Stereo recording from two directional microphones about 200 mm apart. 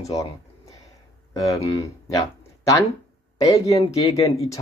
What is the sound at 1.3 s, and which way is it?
Speech, 15° left (ahead or behind).